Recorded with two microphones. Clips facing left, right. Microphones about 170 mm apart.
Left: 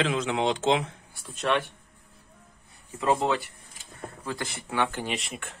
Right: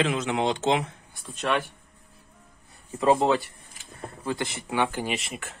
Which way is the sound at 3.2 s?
35° right (ahead or behind).